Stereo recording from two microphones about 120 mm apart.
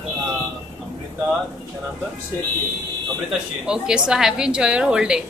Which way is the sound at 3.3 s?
5° right (ahead or behind).